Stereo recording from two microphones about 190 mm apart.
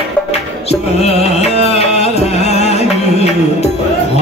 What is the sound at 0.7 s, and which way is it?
Music, 35° left (ahead or behind).